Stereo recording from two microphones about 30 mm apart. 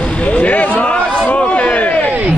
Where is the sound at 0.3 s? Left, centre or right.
Left.